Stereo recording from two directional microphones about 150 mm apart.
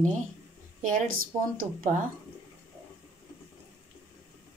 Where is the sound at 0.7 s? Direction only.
60° right (ahead or behind).